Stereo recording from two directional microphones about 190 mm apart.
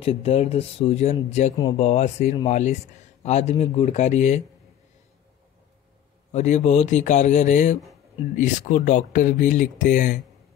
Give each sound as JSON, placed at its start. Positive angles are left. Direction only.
{"t": 0.0, "sound": "speech", "side_deg": 30}
{"t": 6.3, "sound": "speech", "side_deg": 40}